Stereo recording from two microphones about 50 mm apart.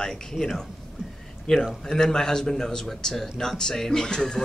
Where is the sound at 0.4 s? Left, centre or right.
Centre.